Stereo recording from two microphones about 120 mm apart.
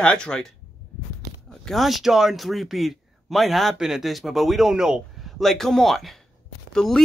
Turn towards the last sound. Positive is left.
turn(degrees=5)  # may be behind; listen again after turning